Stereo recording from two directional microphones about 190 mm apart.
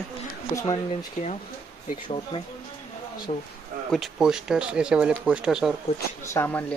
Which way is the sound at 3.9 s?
Centre (ahead or behind).